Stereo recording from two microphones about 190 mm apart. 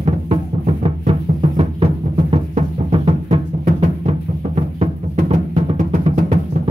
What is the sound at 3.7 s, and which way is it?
Music, 35° right (ahead or behind).